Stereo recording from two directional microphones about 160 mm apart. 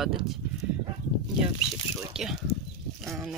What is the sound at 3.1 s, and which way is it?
Speech, 5° right (ahead or behind).